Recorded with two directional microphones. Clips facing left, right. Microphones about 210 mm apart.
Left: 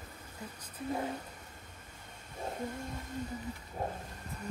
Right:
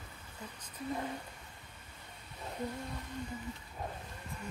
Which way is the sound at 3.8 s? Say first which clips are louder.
Left 6 dB; 50° left (ahead or behind).